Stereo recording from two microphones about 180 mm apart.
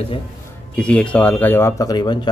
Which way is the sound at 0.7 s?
5° left (ahead or behind).